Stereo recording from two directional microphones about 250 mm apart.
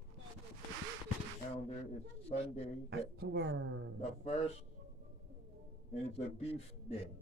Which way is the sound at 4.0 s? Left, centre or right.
Left.